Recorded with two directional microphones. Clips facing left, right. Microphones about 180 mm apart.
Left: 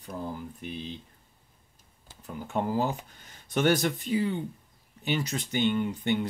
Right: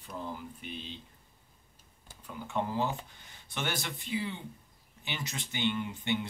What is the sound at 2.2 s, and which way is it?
Speech, 45° left (ahead or behind).